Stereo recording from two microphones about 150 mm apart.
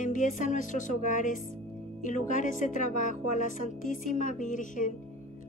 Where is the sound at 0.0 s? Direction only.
60° left (ahead or behind).